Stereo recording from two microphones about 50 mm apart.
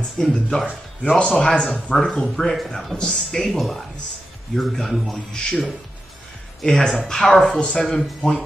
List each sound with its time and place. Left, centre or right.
0.2 s speech: centre
5.1 s speech: centre
6.6 s speech: centre